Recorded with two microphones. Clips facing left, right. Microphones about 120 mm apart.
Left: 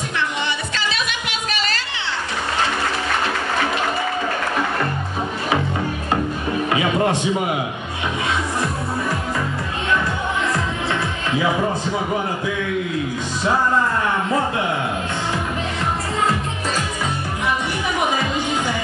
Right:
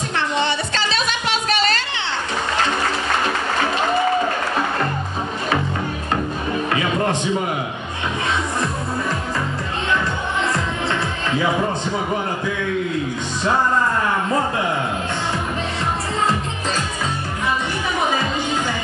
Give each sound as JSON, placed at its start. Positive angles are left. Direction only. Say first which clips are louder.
{"t": 0.2, "sound": "music", "louder": "right 4 dB", "side_deg": -30}
{"t": 6.7, "sound": "music", "louder": "left 2 dB", "side_deg": 20}